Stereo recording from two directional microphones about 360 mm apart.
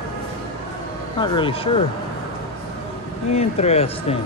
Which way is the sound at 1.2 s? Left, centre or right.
Centre.